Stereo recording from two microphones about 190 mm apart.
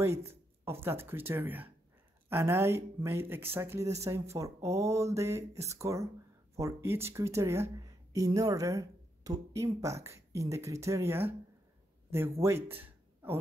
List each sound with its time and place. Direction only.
0.0 s speech: 15° right (ahead or behind)